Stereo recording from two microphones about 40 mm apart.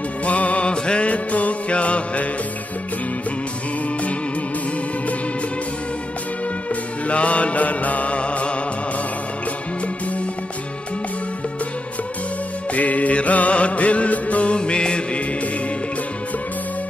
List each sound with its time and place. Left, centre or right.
0.2 s music: left
6.7 s music: left
12.7 s music: left